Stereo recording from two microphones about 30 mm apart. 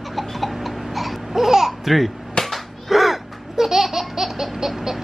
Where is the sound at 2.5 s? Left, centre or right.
Centre.